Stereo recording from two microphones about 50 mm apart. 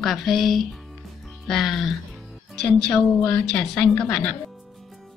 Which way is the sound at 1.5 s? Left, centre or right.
Centre.